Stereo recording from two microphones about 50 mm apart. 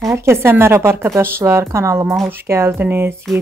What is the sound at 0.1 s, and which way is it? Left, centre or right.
A woman's voice, right.